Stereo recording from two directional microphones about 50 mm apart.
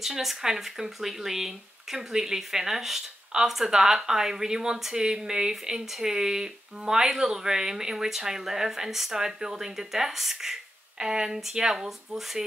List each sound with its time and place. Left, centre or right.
0.0 s speech: centre